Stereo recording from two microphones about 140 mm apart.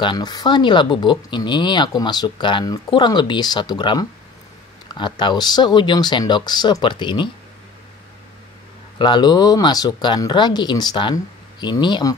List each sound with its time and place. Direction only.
0.0 s speech: 30° left (ahead or behind)
8.9 s speech: 35° left (ahead or behind)